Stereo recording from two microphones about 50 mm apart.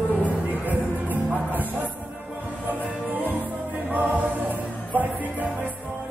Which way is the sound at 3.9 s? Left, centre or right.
Right.